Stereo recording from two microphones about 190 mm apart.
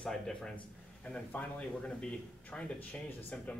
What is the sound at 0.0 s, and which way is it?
A man's voice, 5° left (ahead or behind).